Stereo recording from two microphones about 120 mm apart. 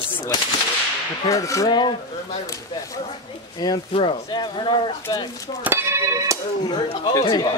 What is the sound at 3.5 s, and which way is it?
Speech, 35° left (ahead or behind).